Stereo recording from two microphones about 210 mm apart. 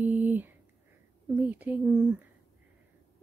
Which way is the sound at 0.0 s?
10° right (ahead or behind).